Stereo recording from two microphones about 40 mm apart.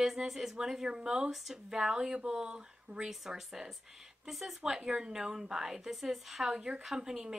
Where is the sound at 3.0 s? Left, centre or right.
Centre.